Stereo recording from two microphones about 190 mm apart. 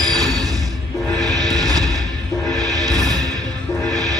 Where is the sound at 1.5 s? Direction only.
20° right (ahead or behind).